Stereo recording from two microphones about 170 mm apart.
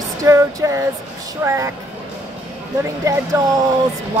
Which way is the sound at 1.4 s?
15° right (ahead or behind).